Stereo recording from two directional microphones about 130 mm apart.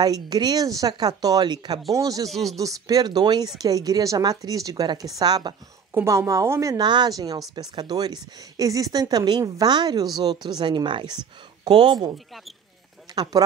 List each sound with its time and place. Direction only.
0.0 s a woman's voice: 30° right (ahead or behind)
2.2 s speech: centre (ahead or behind)
2.5 s a woman's voice: 25° right (ahead or behind)
5.9 s a woman's voice: 20° right (ahead or behind)
13.1 s speech: 30° right (ahead or behind)